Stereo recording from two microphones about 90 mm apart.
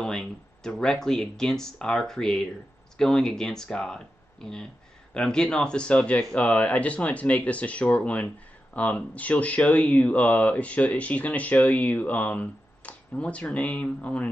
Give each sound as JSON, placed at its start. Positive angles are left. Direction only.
{"t": 0.0, "sound": "speech", "side_deg": 5}